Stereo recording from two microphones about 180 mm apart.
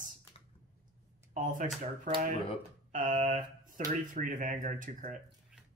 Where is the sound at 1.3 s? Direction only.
45° right (ahead or behind).